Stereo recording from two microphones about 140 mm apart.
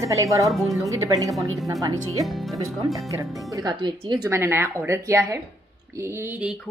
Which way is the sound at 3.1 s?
25° right (ahead or behind).